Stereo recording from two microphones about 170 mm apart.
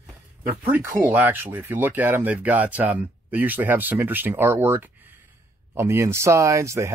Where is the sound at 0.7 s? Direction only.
10° right (ahead or behind).